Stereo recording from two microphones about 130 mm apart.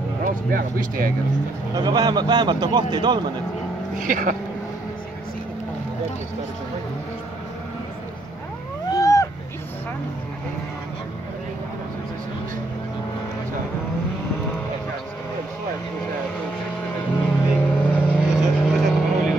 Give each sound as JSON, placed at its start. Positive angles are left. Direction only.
{"t": 0.2, "sound": "speech", "side_deg": -90}
{"t": 1.8, "sound": "a man's voice", "side_deg": -30}
{"t": 4.0, "sound": "speech", "side_deg": -90}
{"t": 8.9, "sound": "cat", "side_deg": 25}
{"t": 17.3, "sound": "vehicle", "side_deg": 10}
{"t": 18.3, "sound": "vehicle", "side_deg": 0}